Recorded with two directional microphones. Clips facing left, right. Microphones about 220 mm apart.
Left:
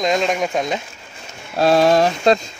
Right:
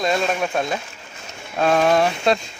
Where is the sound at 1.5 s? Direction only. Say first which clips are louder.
Left 3 dB; 35° left (ahead or behind).